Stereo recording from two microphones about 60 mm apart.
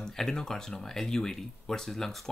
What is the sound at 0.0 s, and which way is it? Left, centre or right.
Speech, centre.